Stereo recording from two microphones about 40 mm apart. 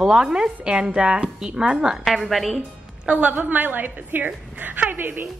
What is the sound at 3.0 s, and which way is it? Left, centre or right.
Speech, right.